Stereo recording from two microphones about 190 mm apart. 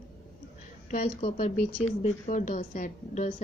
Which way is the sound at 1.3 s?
35° left (ahead or behind).